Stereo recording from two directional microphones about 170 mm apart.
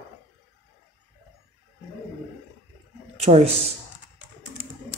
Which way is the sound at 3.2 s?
40° right (ahead or behind).